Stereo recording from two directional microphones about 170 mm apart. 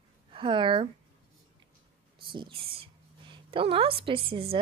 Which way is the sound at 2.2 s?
30° right (ahead or behind).